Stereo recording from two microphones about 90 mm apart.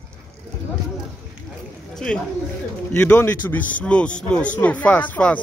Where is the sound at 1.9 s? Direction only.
5° left (ahead or behind).